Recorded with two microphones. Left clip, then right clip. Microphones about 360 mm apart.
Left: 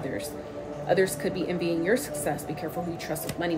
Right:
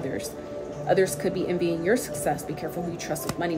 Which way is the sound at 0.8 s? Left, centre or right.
Centre.